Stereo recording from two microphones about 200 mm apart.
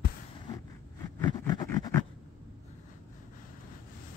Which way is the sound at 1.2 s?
15° left (ahead or behind).